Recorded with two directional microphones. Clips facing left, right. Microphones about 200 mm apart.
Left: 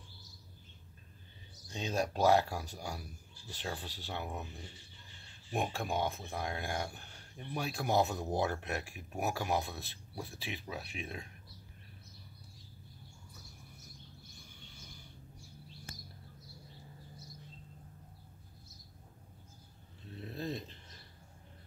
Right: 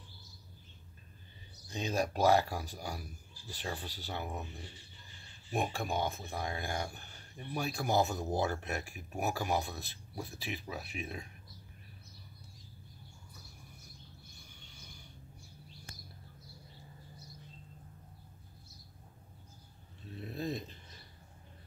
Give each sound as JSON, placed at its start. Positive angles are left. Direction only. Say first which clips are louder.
{"t": 1.7, "sound": "speech", "louder": "right 1 dB", "side_deg": -5}
{"t": 5.5, "sound": "speech", "louder": "right 1 dB", "side_deg": 0}
{"t": 20.2, "sound": "dog", "louder": "right 2 dB", "side_deg": -15}